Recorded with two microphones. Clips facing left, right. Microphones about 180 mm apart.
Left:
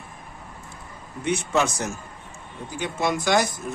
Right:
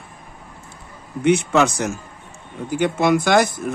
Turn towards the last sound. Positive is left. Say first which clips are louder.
# right 6 dB
turn(degrees=-60)  # may be behind; listen again after turning